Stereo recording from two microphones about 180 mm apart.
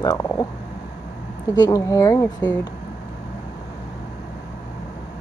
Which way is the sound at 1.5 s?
20° left (ahead or behind).